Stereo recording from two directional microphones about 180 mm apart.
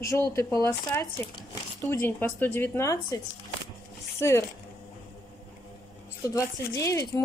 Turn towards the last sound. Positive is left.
turn(degrees=20)  # may be behind; listen again after turning